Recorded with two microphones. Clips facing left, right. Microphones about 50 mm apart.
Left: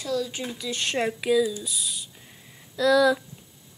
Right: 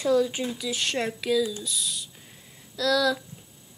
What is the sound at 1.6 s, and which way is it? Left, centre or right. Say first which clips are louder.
Speech: right 1 dB; centre.